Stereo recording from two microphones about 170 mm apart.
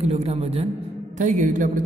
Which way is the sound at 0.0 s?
35° right (ahead or behind).